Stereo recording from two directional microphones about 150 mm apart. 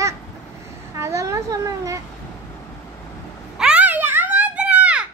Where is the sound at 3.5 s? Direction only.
5° right (ahead or behind).